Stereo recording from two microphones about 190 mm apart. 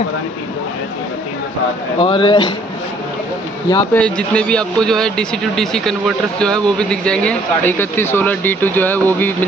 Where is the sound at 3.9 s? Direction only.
5° left (ahead or behind).